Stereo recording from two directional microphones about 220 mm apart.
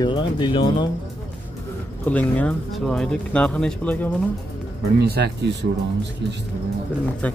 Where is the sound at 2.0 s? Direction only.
5° left (ahead or behind).